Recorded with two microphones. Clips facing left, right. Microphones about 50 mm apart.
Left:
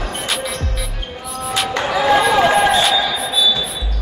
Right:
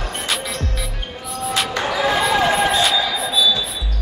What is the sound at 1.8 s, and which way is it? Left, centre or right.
Music, centre.